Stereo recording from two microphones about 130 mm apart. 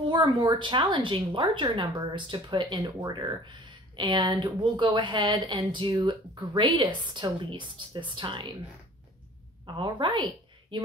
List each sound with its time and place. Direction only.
0.1 s a woman's voice: 35° right (ahead or behind)
9.8 s a woman's voice: 40° right (ahead or behind)